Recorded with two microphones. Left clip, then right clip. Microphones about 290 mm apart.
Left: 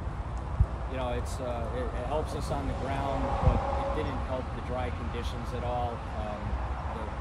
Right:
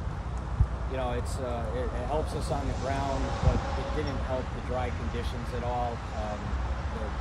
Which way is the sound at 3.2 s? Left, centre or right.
Left.